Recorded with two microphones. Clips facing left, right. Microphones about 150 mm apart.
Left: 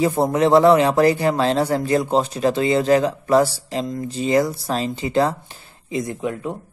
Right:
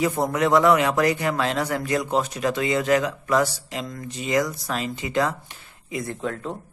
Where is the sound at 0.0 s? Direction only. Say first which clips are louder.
Left 5 dB; 30° left (ahead or behind).